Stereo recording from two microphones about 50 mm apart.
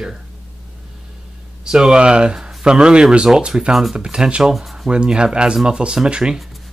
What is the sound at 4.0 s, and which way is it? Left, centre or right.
Speech, centre.